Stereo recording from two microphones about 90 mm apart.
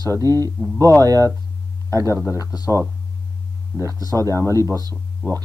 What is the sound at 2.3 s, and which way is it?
Speech, 45° left (ahead or behind).